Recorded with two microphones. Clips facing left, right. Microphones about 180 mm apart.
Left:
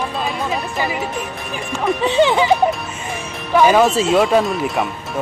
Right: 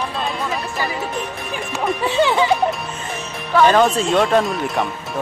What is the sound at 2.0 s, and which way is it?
Speech, 20° left (ahead or behind).